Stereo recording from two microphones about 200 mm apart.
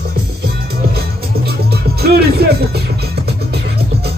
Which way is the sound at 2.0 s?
50° right (ahead or behind).